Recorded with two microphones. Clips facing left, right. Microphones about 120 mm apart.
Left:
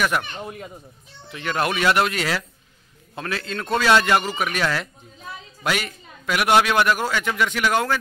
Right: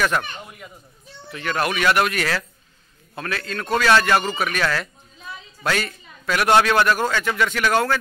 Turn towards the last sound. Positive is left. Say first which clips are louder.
# right 1 dB
turn(degrees=15)  # may be behind; listen again after turning